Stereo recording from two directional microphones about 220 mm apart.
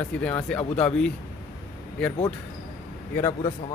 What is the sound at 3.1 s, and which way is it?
Speech, 15° left (ahead or behind).